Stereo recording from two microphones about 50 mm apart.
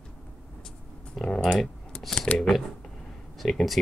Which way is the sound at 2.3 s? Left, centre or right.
Centre.